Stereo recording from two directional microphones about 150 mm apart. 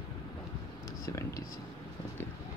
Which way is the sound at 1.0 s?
20° left (ahead or behind).